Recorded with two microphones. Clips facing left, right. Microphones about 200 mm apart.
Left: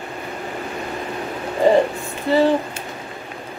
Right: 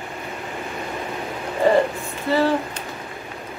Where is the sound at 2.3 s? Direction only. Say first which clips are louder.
Left 3 dB; 15° left (ahead or behind).